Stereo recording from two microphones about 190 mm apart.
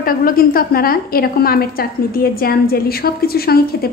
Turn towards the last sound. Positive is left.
turn(degrees=55)  # may be behind; listen again after turning